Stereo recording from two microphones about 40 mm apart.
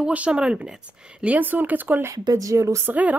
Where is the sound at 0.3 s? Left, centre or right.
Right.